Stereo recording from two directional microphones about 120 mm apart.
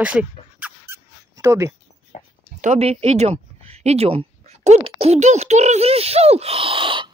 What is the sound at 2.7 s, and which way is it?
Speech, 60° right (ahead or behind).